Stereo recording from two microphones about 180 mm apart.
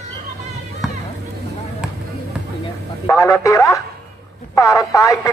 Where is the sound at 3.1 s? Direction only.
15° left (ahead or behind).